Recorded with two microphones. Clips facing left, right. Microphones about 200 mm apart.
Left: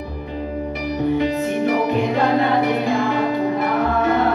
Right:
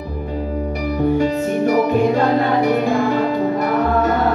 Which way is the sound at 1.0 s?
45° right (ahead or behind).